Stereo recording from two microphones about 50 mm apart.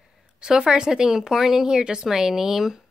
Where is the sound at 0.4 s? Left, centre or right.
Centre.